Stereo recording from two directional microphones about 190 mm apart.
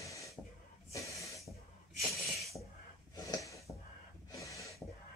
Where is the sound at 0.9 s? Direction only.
15° left (ahead or behind).